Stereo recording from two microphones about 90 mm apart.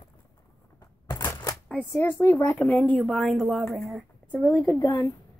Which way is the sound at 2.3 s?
20° left (ahead or behind).